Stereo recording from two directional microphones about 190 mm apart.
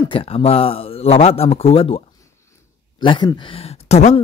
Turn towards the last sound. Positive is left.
turn(degrees=35)  # may be behind; listen again after turning